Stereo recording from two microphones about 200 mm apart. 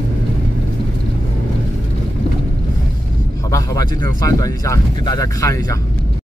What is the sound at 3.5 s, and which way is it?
Speech, 15° left (ahead or behind).